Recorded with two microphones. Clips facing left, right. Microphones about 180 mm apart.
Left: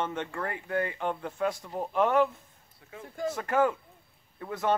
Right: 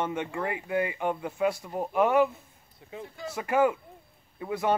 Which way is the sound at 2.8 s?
20° right (ahead or behind).